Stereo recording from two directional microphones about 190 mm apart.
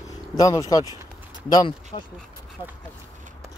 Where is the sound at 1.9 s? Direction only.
35° left (ahead or behind).